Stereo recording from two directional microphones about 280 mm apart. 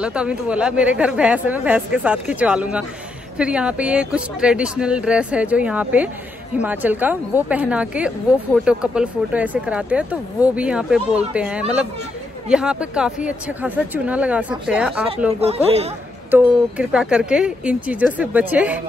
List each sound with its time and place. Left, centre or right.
0.0 s a woman's voice: centre
15.4 s speech: right
16.3 s a woman's voice: centre